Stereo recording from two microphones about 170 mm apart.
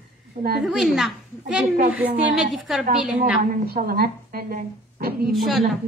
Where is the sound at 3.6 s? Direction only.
65° right (ahead or behind).